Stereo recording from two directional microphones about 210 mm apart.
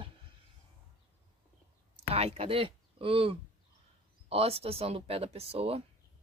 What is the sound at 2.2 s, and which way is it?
Speech, 30° right (ahead or behind).